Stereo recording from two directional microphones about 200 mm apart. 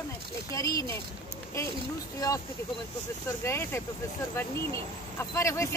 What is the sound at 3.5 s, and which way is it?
Speech, 10° left (ahead or behind).